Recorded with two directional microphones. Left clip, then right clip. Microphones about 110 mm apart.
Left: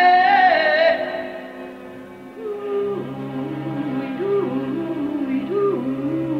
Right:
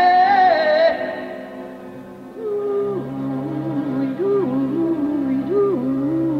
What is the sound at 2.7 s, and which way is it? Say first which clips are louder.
Music: right 2 dB; 40° left (ahead or behind).